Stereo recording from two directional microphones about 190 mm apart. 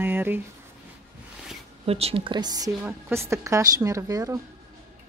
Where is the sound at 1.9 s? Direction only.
30° right (ahead or behind).